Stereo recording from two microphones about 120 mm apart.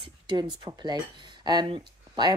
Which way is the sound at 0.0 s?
40° right (ahead or behind).